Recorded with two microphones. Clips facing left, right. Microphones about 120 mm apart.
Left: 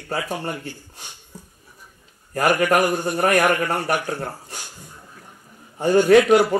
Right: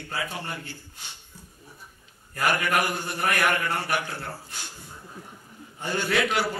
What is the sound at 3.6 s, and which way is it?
A man's voice, 45° left (ahead or behind).